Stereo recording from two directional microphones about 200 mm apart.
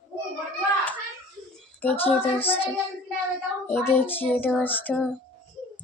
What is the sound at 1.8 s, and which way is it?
Child singing, 10° left (ahead or behind).